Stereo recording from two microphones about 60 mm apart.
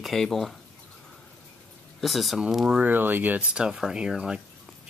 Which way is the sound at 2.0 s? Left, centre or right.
Centre.